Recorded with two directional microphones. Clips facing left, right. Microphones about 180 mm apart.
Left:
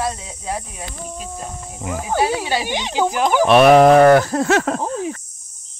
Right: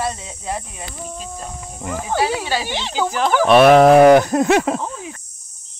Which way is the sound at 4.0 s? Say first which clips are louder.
Right 1 dB; 15° right (ahead or behind).